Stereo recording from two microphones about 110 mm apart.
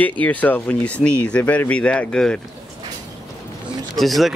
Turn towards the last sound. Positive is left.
turn(degrees=0)  # may be behind; listen again after turning